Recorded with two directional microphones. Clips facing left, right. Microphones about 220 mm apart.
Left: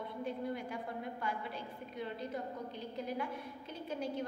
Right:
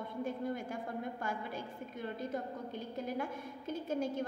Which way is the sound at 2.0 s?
50° right (ahead or behind).